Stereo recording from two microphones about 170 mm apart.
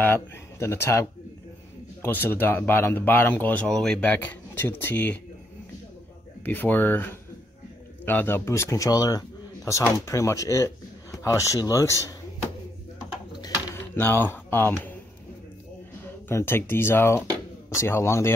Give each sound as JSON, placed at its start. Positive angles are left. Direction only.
{"t": 0.0, "sound": "speech", "side_deg": 15}
{"t": 6.4, "sound": "speech", "side_deg": 10}
{"t": 13.9, "sound": "speech", "side_deg": 10}
{"t": 16.3, "sound": "speech", "side_deg": 15}